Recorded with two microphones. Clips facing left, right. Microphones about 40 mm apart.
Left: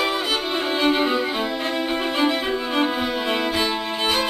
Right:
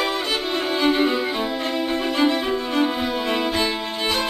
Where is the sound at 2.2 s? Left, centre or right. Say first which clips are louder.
Right 2 dB; centre.